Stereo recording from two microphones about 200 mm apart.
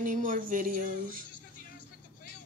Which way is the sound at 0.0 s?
40° right (ahead or behind).